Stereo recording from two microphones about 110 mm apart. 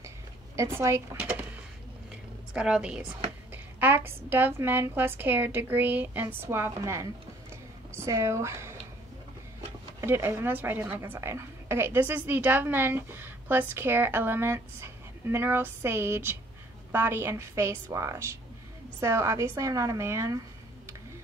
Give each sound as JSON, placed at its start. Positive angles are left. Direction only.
{"t": 0.6, "sound": "a woman's voice", "side_deg": -25}
{"t": 1.1, "sound": "drawer open or close", "side_deg": -10}
{"t": 2.5, "sound": "a woman's voice", "side_deg": -10}
{"t": 9.9, "sound": "a woman's voice", "side_deg": -20}